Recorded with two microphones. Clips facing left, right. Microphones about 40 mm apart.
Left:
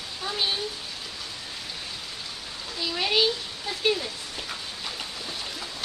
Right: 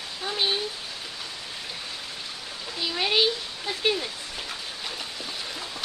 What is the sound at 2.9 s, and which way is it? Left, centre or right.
Speech, centre.